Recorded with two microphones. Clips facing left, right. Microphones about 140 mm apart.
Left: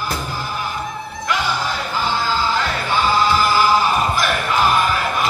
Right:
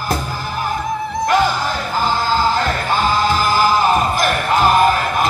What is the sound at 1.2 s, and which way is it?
Music, 45° right (ahead or behind).